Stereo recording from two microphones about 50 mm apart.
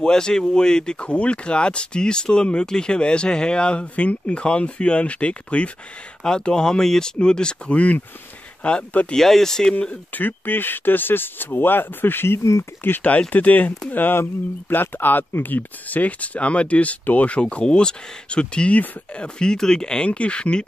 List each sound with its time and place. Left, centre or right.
0.0 s speech: centre
6.2 s speech: centre
9.1 s speech: centre
10.1 s speech: left
13.3 s speech: left